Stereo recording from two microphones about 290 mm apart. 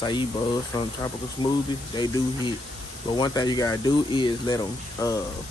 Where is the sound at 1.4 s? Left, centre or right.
Centre.